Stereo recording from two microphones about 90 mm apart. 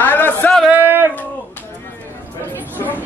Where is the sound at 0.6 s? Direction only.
20° right (ahead or behind).